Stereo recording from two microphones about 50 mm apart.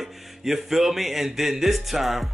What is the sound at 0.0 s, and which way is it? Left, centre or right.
Speech, centre.